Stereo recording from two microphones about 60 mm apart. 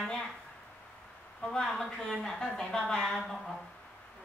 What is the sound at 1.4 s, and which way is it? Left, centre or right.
Speech, centre.